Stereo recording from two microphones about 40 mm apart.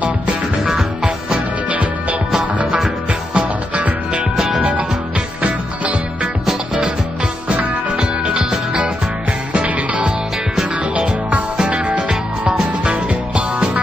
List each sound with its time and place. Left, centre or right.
1.0 s music: right
7.4 s music: right
12.4 s music: right
12.9 s music: right